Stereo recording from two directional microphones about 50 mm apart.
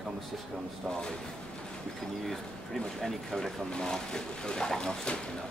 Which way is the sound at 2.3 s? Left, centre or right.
Centre.